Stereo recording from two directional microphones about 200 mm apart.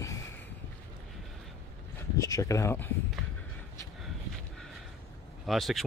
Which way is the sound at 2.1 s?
15° left (ahead or behind).